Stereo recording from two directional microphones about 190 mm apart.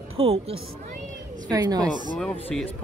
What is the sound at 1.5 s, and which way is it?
Speech, 20° right (ahead or behind).